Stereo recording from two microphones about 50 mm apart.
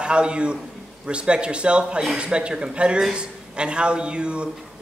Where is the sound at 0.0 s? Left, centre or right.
Centre.